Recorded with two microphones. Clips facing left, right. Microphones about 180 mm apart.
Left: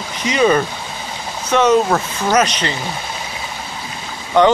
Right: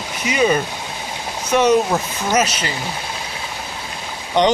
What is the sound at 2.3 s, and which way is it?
Speech, 5° right (ahead or behind).